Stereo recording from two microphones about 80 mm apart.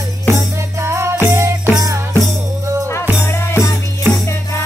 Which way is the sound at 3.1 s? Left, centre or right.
Left.